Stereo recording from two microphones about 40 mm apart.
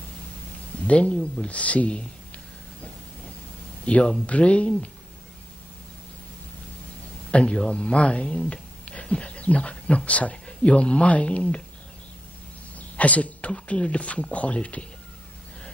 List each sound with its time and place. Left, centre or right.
0.8 s speech: left
3.8 s speech: left
7.2 s speech: left
12.7 s a sound: left
13.5 s speech: left